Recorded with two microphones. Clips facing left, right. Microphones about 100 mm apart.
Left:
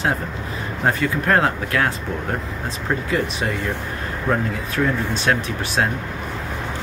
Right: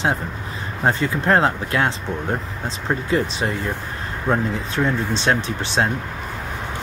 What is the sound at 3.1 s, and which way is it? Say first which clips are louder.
Speech: right 3 dB; 30° right (ahead or behind).